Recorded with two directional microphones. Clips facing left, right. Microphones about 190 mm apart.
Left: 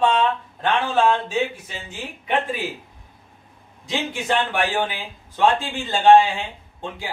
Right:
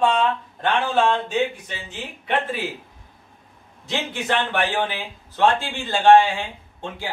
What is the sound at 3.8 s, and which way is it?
Speech, 10° left (ahead or behind).